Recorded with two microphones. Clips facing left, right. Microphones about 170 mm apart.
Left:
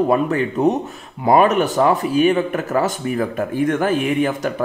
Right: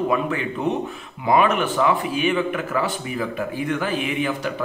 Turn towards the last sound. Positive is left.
turn(degrees=45)  # may be behind; listen again after turning